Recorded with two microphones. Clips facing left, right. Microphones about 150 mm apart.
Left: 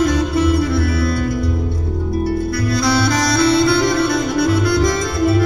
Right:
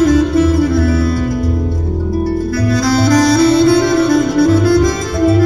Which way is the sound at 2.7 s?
45° right (ahead or behind).